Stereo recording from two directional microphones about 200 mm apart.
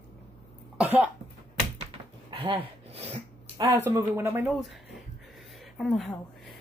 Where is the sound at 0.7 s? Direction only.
5° right (ahead or behind).